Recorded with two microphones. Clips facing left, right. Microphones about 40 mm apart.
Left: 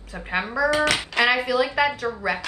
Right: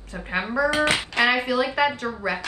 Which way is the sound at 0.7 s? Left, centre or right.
Right.